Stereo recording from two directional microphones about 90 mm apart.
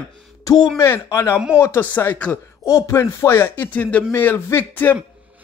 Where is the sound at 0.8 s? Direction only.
30° left (ahead or behind).